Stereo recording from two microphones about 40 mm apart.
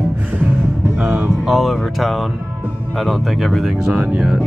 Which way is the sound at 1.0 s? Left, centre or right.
Right.